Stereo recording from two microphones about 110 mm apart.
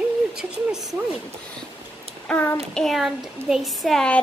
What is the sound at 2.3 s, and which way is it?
Speech, 15° left (ahead or behind).